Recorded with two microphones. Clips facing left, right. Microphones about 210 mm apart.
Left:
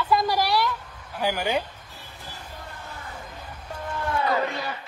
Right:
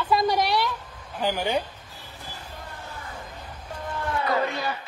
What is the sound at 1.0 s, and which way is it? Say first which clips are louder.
Speech: even; 10° left (ahead or behind).